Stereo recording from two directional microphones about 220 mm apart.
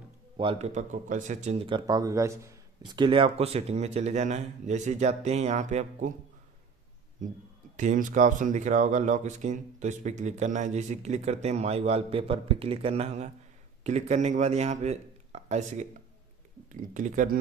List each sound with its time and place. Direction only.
0.4 s speech: 25° right (ahead or behind)
7.7 s speech: 35° right (ahead or behind)